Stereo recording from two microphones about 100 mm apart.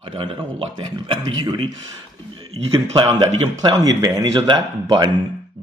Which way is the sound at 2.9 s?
45° right (ahead or behind).